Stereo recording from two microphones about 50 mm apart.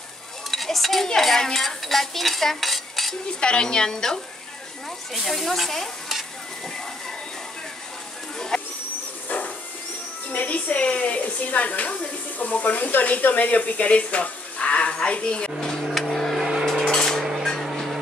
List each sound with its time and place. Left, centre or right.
0.5 s speech: centre
3.3 s a woman's voice: centre
5.1 s stir: centre
8.4 s a sound: centre
9.3 s a sound: left
10.3 s a woman's voice: left
15.8 s a sound: centre
16.6 s dishes: centre
17.6 s vehicle: centre